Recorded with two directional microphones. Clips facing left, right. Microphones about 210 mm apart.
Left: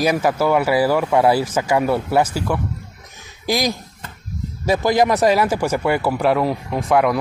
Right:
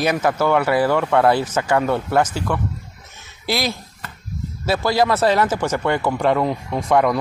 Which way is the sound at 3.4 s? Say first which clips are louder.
Left 2 dB; 15° left (ahead or behind).